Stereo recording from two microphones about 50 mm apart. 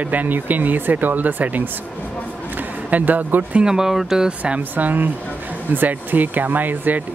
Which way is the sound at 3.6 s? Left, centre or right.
Centre.